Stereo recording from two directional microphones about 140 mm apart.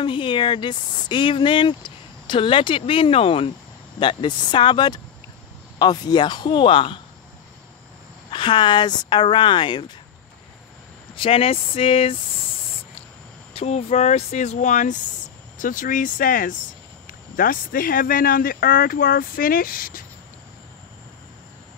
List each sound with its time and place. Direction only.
0.0 s speech: 35° left (ahead or behind)
8.3 s speech: 35° left (ahead or behind)
11.1 s speech: 45° left (ahead or behind)
13.5 s speech: 45° left (ahead or behind); by 16.5 s 75° left (ahead or behind)
17.4 s speech: 90° left